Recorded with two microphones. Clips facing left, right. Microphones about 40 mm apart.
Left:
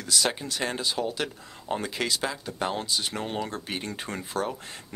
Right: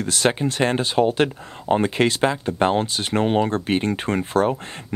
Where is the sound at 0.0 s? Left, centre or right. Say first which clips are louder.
Right 7 dB; right.